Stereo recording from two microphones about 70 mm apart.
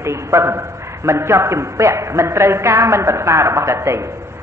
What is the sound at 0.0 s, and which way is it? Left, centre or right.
A man's voice, right.